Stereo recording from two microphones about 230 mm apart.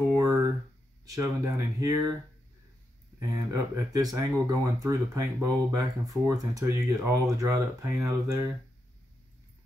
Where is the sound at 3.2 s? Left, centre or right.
Centre.